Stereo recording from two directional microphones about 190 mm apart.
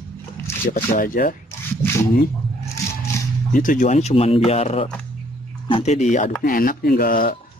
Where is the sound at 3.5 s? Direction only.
45° left (ahead or behind).